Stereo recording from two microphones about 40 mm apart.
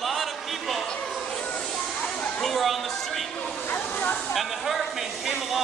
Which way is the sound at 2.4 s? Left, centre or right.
Centre.